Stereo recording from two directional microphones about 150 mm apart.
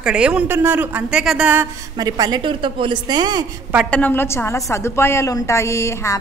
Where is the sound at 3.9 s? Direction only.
10° left (ahead or behind).